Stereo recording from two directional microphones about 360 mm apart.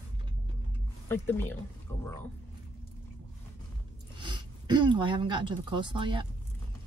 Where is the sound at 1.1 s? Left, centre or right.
Centre.